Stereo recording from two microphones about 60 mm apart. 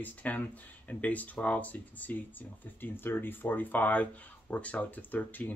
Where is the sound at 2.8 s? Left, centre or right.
Left.